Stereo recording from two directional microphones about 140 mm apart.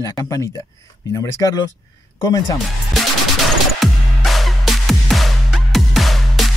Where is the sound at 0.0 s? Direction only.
25° left (ahead or behind).